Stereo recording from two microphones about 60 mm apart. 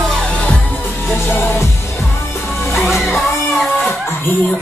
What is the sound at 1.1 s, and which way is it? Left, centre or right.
Music, left.